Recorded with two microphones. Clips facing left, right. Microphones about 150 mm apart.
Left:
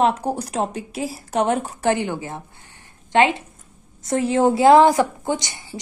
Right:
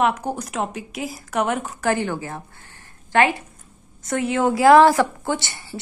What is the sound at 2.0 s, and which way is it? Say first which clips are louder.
A woman's voice: even; 20° left (ahead or behind).